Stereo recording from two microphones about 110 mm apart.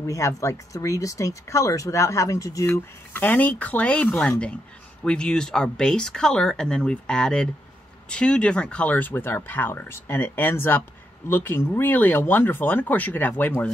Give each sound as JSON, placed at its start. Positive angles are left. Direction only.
{"t": 0.0, "sound": "speech", "side_deg": 30}
{"t": 2.7, "sound": "speech", "side_deg": 15}